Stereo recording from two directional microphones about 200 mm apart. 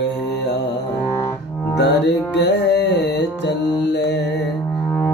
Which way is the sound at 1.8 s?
60° left (ahead or behind).